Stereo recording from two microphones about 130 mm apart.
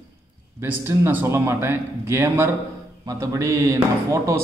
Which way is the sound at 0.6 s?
15° right (ahead or behind).